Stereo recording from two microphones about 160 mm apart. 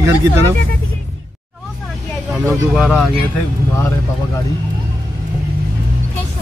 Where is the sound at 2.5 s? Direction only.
Centre (ahead or behind).